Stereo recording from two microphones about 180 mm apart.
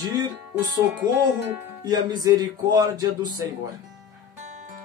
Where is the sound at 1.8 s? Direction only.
20° right (ahead or behind).